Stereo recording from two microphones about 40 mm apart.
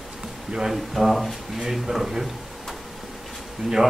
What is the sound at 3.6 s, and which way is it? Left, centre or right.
Speech, centre.